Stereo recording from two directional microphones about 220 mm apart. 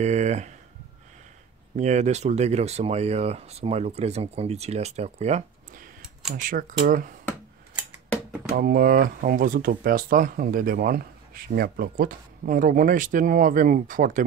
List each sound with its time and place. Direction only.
0.0 s speech: 30° right (ahead or behind)
1.8 s speech: 30° right (ahead or behind)
8.5 s speech: 40° right (ahead or behind)